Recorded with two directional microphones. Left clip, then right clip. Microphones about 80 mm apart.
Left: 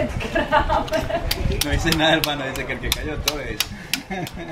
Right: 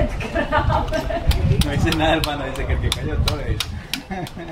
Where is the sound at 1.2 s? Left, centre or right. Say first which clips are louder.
Even; left.